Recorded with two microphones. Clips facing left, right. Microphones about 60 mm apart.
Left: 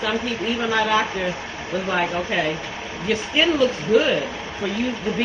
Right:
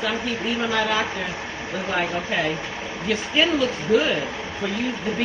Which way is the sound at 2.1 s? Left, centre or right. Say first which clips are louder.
Left 1 dB; left.